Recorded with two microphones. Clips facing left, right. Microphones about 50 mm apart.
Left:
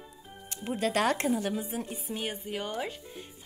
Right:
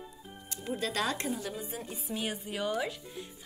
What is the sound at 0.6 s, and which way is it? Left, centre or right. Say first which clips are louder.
Speech: left 5 dB; left.